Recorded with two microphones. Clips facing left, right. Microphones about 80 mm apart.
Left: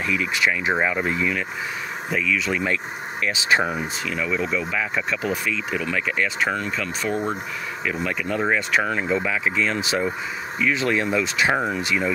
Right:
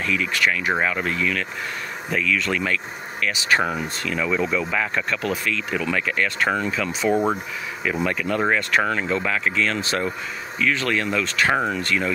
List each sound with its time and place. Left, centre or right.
0.0 s speech: centre
2.0 s speech: centre
3.3 s speech: left
3.7 s speech: centre
6.5 s speech: centre
8.1 s speech: centre